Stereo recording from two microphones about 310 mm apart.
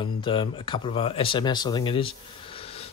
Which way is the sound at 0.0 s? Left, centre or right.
Centre.